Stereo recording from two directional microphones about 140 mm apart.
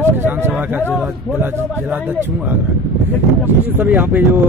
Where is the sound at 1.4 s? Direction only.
15° right (ahead or behind).